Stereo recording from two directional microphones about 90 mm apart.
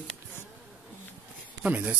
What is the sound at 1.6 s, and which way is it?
Speech, 15° right (ahead or behind).